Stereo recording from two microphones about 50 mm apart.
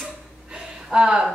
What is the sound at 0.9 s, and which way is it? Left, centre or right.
Speech, centre.